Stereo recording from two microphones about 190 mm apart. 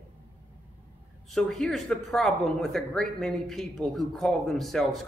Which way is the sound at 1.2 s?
Centre (ahead or behind).